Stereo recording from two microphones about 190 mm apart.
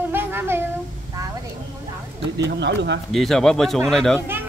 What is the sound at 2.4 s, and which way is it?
Speech, 65° right (ahead or behind).